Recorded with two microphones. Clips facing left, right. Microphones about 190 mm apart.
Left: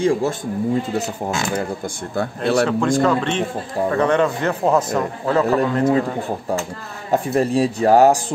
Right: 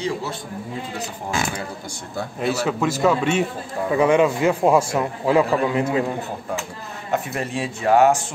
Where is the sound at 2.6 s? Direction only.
5° right (ahead or behind).